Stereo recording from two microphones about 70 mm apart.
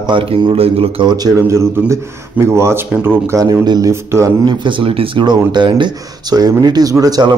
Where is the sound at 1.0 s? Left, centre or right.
Right.